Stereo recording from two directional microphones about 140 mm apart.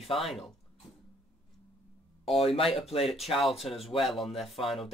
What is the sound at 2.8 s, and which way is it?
Speech, 45° left (ahead or behind).